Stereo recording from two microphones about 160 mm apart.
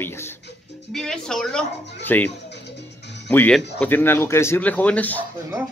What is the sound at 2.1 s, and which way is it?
Speech, 10° left (ahead or behind).